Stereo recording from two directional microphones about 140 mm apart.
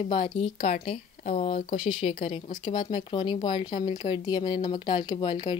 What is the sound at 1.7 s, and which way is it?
Speech, 40° left (ahead or behind).